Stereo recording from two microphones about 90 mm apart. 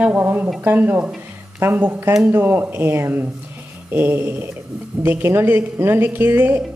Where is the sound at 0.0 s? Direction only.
20° right (ahead or behind).